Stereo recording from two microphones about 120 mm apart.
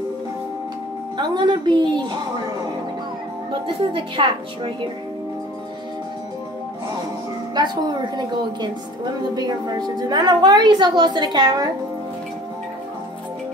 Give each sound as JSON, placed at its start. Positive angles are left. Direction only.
{"t": 1.1, "sound": "a woman's voice", "side_deg": -40}
{"t": 3.6, "sound": "a woman's voice", "side_deg": -45}
{"t": 7.5, "sound": "a woman's voice", "side_deg": -35}